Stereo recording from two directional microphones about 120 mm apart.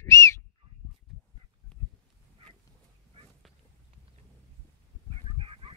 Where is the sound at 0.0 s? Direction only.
25° left (ahead or behind).